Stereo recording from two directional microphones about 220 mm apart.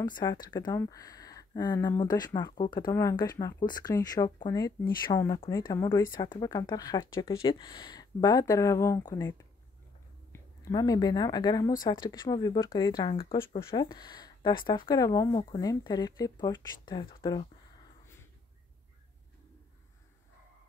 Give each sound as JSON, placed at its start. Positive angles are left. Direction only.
{"t": 0.0, "sound": "speech", "side_deg": 20}